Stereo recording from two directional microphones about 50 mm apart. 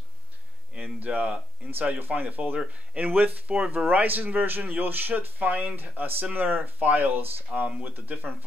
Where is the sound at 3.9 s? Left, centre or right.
Right.